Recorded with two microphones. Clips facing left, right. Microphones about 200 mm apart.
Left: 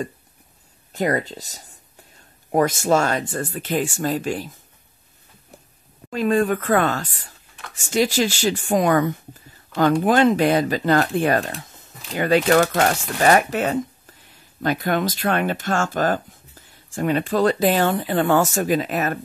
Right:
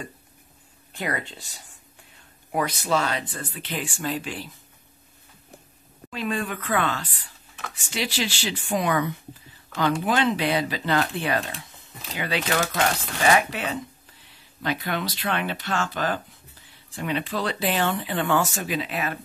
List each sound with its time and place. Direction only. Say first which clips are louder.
0.9 s speech: left 8 dB; 40° left (ahead or behind)
6.0 s speech: left 9 dB; 45° left (ahead or behind)